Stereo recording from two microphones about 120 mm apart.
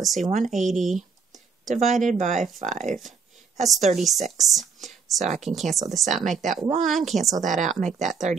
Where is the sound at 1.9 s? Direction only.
90° right.